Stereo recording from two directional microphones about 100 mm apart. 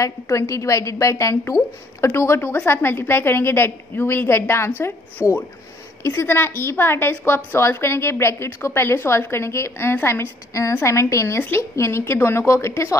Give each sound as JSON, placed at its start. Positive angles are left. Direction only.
{"t": 0.0, "sound": "a woman's voice", "side_deg": 30}